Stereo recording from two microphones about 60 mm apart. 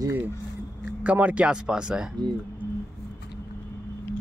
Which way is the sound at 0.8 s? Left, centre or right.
Right.